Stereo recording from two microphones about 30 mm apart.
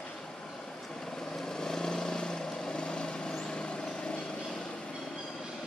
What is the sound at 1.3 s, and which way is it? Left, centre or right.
Vehicle, centre.